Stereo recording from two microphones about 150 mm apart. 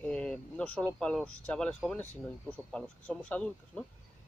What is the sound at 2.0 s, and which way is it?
Speech, 20° right (ahead or behind).